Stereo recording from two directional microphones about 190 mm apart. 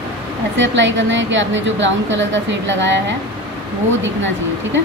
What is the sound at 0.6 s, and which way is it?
A woman's voice, 75° right (ahead or behind).